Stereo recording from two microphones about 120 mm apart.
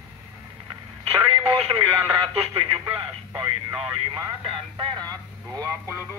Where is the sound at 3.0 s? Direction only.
40° right (ahead or behind).